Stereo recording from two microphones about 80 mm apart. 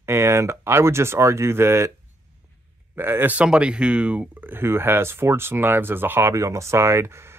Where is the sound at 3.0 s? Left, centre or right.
Right.